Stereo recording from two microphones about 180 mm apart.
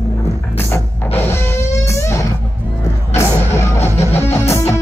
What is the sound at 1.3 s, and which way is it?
Music, 15° left (ahead or behind).